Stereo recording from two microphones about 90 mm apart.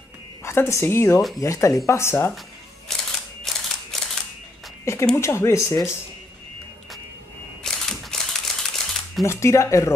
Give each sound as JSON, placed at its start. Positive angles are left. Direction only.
{"t": 0.4, "sound": "speech", "side_deg": 30}
{"t": 3.1, "sound": "camera", "side_deg": 0}
{"t": 5.1, "sound": "speech", "side_deg": 30}
{"t": 7.6, "sound": "crumpling", "side_deg": 5}
{"t": 9.2, "sound": "speech", "side_deg": 30}